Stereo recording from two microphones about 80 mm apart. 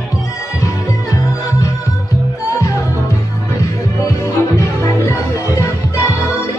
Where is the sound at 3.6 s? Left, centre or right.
Left.